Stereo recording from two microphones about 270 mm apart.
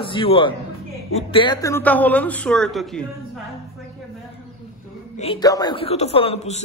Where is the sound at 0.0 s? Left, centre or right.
Centre.